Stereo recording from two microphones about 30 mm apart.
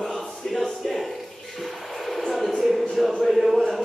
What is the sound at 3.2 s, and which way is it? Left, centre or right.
Chant, centre.